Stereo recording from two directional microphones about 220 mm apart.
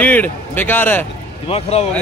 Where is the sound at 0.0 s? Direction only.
10° left (ahead or behind).